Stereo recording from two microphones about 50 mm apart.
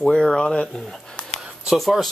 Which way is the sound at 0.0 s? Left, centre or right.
Centre.